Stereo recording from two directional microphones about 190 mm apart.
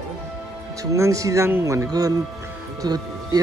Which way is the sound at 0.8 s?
15° right (ahead or behind).